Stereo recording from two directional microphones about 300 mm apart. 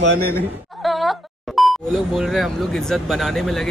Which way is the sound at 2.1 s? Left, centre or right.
Centre.